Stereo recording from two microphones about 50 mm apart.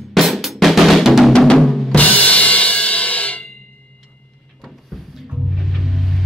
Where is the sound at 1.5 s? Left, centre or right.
Centre.